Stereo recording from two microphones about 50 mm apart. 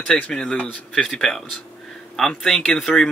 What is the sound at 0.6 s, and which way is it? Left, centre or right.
Speech, left.